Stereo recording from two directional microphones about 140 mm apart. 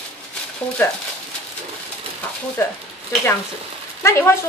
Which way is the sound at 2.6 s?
20° left (ahead or behind).